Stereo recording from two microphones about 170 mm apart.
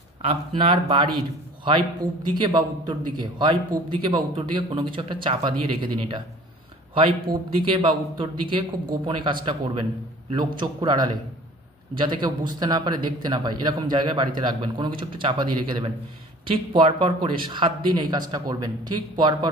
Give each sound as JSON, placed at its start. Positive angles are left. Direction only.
{"t": 0.2, "sound": "speech", "side_deg": -35}
{"t": 2.3, "sound": "a man's voice", "side_deg": -25}